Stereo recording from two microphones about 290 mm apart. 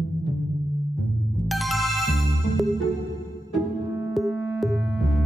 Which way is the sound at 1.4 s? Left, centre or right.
Centre.